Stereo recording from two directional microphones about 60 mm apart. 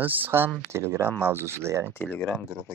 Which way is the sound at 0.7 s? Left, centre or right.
Right.